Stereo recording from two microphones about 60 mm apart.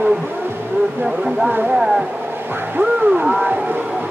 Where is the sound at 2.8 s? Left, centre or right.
Right.